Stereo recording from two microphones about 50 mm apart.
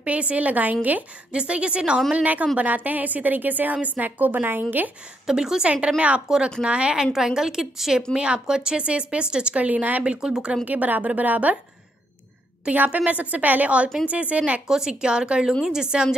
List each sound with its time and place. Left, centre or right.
0.0 s speech: right
1.3 s speech: right
2.1 s a woman's voice: right
5.2 s a woman's voice: centre
5.9 s speech: right
6.2 s a woman's voice: centre
7.1 s a woman's voice: centre; by 10.0 s right
10.0 s a woman's voice: centre
10.6 s a woman's voice: right
12.7 s speech: right
14.7 s a woman's voice: centre